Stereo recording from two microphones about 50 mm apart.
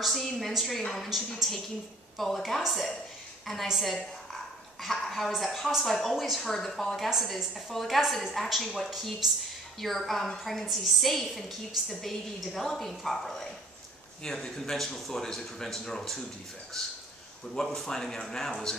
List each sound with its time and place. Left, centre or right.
0.0 s a woman's voice: centre
3.6 s a woman's voice: centre
7.1 s a woman's voice: centre